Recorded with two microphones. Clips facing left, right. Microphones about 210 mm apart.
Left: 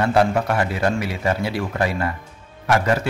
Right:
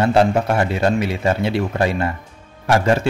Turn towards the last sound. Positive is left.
turn(degrees=-30)  # may be behind; listen again after turning